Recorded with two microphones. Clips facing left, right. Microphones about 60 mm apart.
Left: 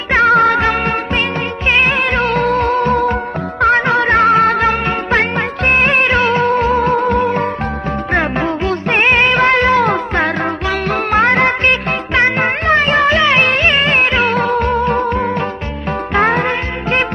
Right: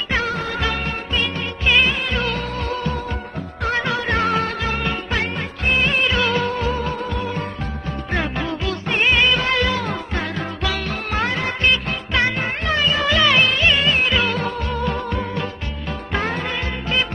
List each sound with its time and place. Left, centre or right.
0.1 s music: left
0.7 s music: left